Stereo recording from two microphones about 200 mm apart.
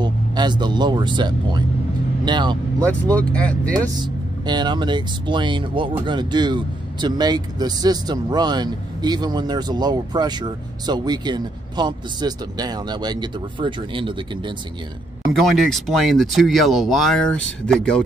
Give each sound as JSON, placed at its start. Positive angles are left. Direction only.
{"t": 0.0, "sound": "speech", "side_deg": -20}
{"t": 2.9, "sound": "speech", "side_deg": 5}
{"t": 4.0, "sound": "speech", "side_deg": -20}
{"t": 15.3, "sound": "speech", "side_deg": 0}